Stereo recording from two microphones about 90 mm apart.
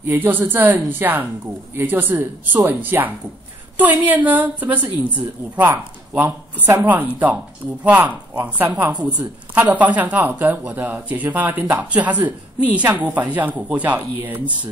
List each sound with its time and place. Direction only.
0.0 s speech: 20° right (ahead or behind)